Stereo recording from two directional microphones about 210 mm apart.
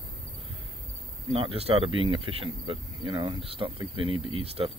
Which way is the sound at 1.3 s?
25° right (ahead or behind).